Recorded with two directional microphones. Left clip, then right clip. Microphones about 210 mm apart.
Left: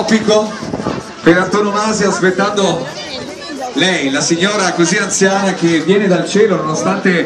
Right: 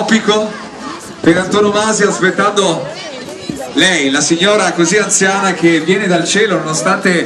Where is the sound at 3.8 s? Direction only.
30° right (ahead or behind).